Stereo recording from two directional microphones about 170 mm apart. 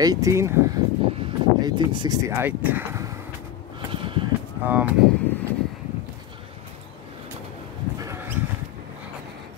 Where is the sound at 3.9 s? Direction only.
30° right (ahead or behind).